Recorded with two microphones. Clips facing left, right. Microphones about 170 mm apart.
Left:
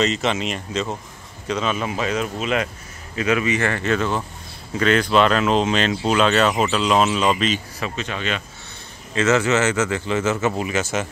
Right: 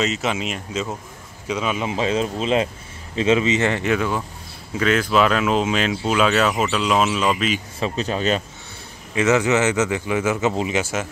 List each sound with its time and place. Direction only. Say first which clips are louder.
0.0 s speech: left 2 dB; 5° right (ahead or behind)
7.8 s speech: right 5 dB; 35° right (ahead or behind)
9.1 s speech: right 1 dB; 15° right (ahead or behind)
10.8 s speech: left 1 dB; 5° right (ahead or behind)